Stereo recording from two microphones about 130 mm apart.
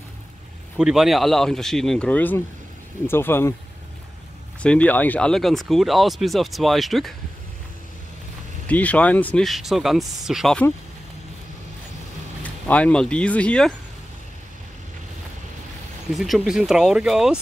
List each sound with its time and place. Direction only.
0.7 s speech: 5° right (ahead or behind); by 3.5 s 20° left (ahead or behind)
4.6 s speech: 10° left (ahead or behind)
8.6 s speech: 10° left (ahead or behind)
9.4 s speech: centre (ahead or behind)
12.4 s speech: 10° left (ahead or behind)
16.1 s speech: centre (ahead or behind)